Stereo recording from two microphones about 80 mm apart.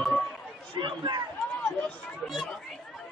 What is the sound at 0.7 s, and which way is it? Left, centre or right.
Chatter, right.